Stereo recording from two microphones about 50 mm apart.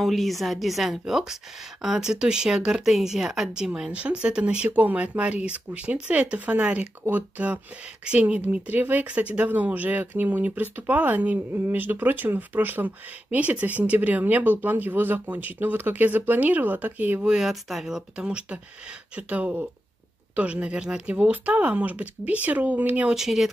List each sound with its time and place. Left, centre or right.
0.0 s a woman's voice: centre
4.6 s speech: right
8.0 s speech: right
8.4 s speech: right
17.4 s a woman's voice: centre
18.1 s speech: right
23.1 s a woman's voice: centre